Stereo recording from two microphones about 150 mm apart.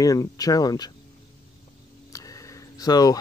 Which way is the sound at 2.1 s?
20° left (ahead or behind).